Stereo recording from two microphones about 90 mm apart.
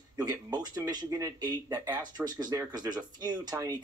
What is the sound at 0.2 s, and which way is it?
Speech, 50° right (ahead or behind).